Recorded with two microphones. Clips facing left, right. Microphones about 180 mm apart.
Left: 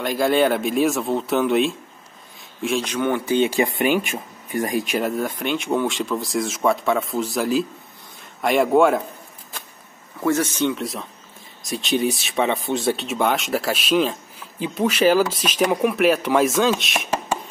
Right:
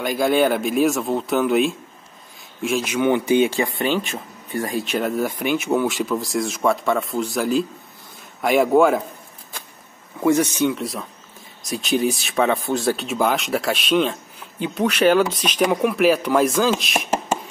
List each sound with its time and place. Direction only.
0.0 s speech: centre (ahead or behind); by 3.4 s 15° right (ahead or behind)
3.4 s speech: 20° left (ahead or behind)
5.0 s speech: 5° right (ahead or behind)
10.2 s speech: 15° right (ahead or behind)
10.7 s speech: centre (ahead or behind)